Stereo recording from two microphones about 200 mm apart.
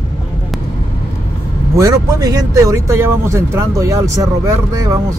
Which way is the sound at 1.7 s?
15° right (ahead or behind).